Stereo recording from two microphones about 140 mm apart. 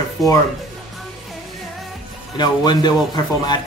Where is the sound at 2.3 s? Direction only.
30° left (ahead or behind).